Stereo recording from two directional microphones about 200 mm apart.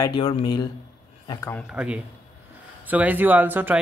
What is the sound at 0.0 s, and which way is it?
A man's voice, 25° left (ahead or behind).